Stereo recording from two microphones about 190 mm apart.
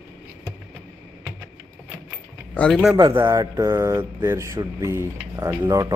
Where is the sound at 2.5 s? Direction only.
5° left (ahead or behind).